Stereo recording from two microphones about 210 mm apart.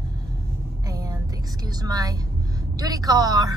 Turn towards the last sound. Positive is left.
turn(degrees=-20)  # may be behind; listen again after turning